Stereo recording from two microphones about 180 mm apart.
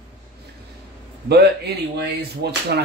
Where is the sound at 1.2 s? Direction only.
65° right (ahead or behind).